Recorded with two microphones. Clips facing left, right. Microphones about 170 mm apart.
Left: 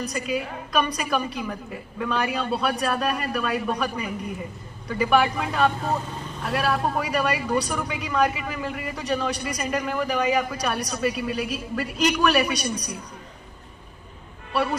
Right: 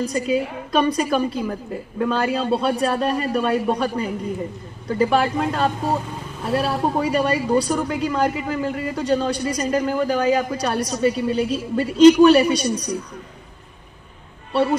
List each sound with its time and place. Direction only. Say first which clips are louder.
0.0 s speech: right 6 dB; 25° right (ahead or behind)
14.5 s speech: right 6 dB; 25° right (ahead or behind)